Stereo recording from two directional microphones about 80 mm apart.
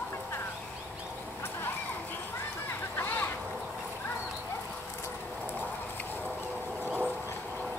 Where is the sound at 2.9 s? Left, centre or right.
Left.